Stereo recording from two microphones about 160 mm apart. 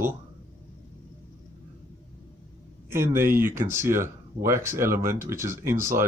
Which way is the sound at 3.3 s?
15° right (ahead or behind).